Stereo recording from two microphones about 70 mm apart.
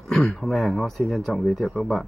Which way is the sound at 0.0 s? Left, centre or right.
Centre.